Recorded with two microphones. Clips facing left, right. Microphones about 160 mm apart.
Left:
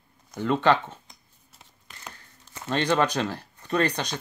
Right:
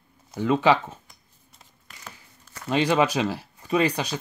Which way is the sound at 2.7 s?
10° right (ahead or behind).